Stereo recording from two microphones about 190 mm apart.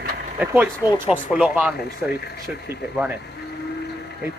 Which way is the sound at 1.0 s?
10° right (ahead or behind).